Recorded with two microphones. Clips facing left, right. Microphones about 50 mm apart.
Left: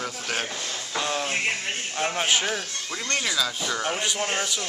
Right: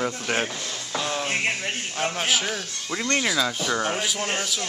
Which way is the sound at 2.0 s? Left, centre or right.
Centre.